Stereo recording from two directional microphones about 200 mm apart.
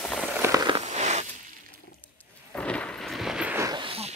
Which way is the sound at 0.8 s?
35° right (ahead or behind).